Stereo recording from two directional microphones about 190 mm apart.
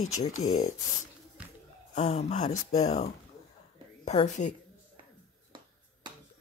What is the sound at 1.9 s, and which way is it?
A woman's voice, 35° left (ahead or behind).